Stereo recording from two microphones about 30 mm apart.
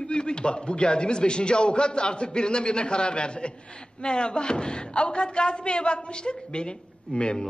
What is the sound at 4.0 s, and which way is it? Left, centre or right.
A man's voice, left.